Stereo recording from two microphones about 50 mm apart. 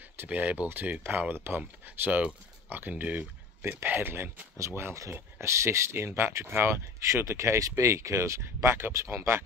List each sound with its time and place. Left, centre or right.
0.3 s speech: right
1.9 s speech: right
4.6 s speech: right
5.9 s speech: right